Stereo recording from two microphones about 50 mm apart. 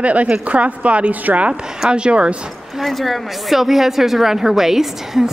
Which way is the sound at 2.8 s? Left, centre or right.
Centre.